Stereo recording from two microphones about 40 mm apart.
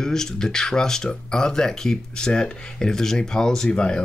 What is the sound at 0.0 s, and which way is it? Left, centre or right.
Speech, centre.